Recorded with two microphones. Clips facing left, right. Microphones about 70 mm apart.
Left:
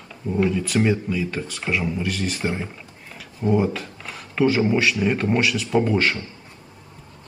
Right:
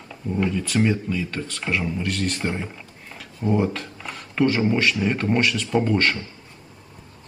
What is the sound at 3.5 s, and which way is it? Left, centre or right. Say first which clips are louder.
Speech: left 2 dB; centre.